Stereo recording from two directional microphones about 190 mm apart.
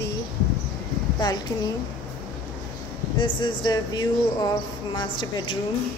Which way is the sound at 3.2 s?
25° left (ahead or behind).